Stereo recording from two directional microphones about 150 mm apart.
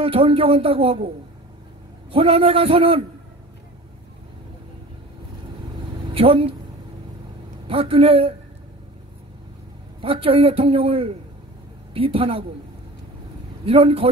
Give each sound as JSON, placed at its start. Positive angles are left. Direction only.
{"t": 0.0, "sound": "a woman's voice", "side_deg": -40}
{"t": 2.1, "sound": "a woman's voice", "side_deg": -40}
{"t": 6.1, "sound": "a woman's voice", "side_deg": -40}
{"t": 7.6, "sound": "a woman's voice", "side_deg": -40}
{"t": 10.0, "sound": "a woman's voice", "side_deg": -35}
{"t": 13.7, "sound": "a woman's voice", "side_deg": -40}